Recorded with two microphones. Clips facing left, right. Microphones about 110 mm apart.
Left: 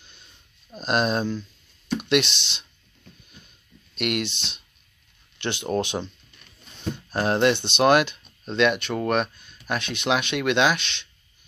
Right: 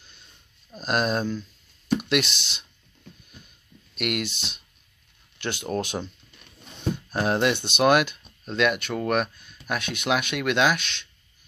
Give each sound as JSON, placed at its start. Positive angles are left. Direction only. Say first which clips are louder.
{"t": 0.7, "sound": "speech", "louder": "left 1 dB", "side_deg": -5}
{"t": 3.9, "sound": "speech", "louder": "left 2 dB", "side_deg": -5}